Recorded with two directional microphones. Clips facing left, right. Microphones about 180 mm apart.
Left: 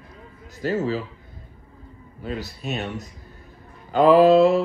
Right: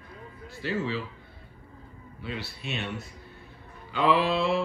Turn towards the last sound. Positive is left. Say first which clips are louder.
# left 11 dB
turn(degrees=45)  # may be behind; listen again after turning